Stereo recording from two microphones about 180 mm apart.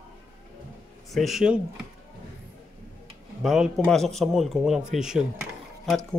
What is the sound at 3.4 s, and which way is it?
Speech, centre (ahead or behind).